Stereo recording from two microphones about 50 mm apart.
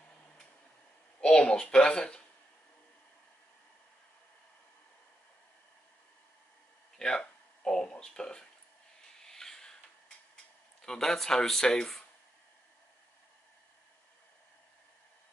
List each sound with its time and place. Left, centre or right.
1.2 s speech: centre
7.0 s a sound: centre
10.8 s speech: centre